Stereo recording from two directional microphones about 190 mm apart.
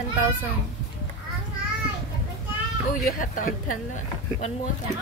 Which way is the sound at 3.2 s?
45° left (ahead or behind).